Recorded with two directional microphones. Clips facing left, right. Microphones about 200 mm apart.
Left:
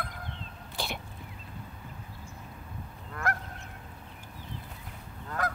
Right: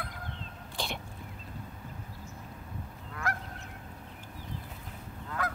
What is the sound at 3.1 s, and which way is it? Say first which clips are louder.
Goose: left 3 dB; 50° left (ahead or behind).